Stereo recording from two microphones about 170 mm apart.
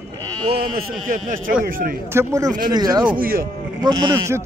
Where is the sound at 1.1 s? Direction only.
50° right (ahead or behind).